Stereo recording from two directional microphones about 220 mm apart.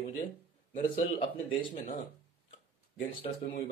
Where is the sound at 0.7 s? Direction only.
35° left (ahead or behind).